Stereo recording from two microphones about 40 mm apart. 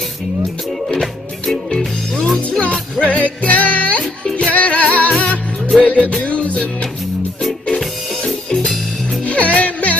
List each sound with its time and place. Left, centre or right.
1.5 s music: centre
2.6 s music: left
4.0 s music: centre
4.5 s music: left
9.2 s music: left